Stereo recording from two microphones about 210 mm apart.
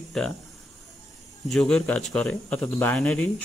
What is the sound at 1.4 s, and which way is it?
Speech, 5° left (ahead or behind).